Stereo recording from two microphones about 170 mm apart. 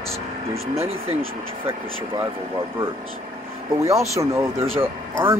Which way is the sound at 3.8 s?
15° right (ahead or behind).